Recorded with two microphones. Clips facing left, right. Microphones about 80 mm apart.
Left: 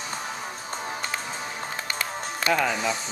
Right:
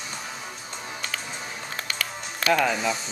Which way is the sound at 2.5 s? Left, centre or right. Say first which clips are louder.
Right 2 dB; centre.